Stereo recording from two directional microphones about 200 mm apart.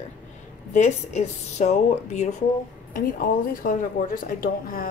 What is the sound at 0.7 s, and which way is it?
Speech, 35° left (ahead or behind).